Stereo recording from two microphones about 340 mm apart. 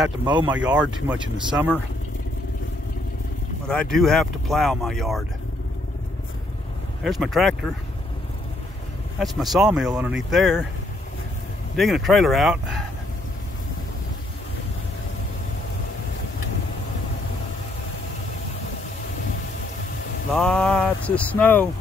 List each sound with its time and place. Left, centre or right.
0.0 s speech: centre
3.9 s speech: centre
7.0 s speech: centre
9.2 s speech: centre
11.7 s speech: centre
20.3 s speech: centre